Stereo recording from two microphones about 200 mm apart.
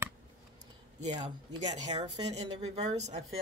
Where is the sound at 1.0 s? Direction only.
35° right (ahead or behind).